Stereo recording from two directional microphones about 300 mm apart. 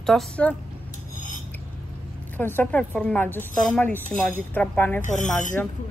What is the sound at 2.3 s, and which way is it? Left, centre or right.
Speech, centre.